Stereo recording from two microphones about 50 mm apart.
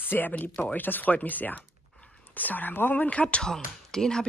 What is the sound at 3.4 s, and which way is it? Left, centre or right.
Speech, centre.